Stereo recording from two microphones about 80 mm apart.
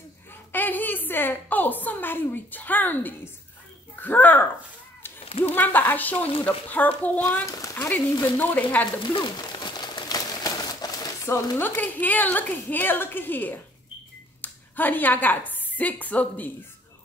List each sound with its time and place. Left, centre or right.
0.5 s a woman's voice: left
7.4 s speech: left
8.4 s speech: left
9.0 s a sound: left
11.5 s a woman's voice: left